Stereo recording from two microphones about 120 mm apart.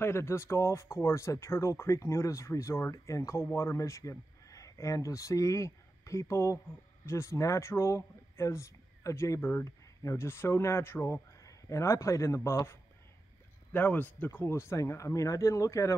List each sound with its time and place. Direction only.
0.0 s speech: 20° left (ahead or behind)